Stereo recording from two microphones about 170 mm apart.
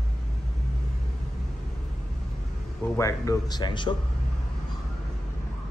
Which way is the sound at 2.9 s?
20° left (ahead or behind).